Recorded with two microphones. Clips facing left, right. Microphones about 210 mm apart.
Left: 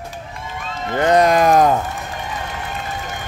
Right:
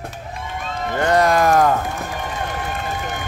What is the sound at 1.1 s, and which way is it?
Speech, 20° left (ahead or behind).